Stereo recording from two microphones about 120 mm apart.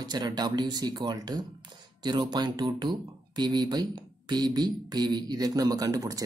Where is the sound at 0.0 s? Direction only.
35° right (ahead or behind).